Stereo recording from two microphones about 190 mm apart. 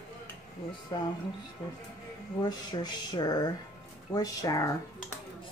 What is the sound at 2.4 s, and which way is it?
Speech, 20° left (ahead or behind).